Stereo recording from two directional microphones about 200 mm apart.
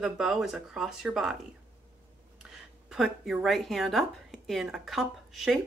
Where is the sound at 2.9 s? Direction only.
Centre (ahead or behind).